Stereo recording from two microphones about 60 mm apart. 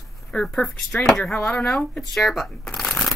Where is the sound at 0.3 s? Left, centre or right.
Centre.